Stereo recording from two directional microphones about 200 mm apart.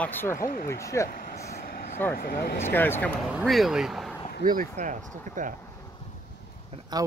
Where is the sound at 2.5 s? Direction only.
10° left (ahead or behind).